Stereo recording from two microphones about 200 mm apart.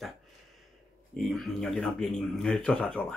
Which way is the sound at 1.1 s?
Centre (ahead or behind).